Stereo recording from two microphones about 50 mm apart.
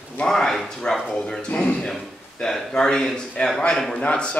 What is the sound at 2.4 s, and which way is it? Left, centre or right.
A man's voice, centre.